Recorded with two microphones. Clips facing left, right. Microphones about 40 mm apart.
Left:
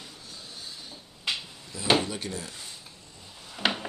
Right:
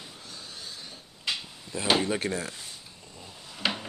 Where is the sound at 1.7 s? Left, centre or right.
Right.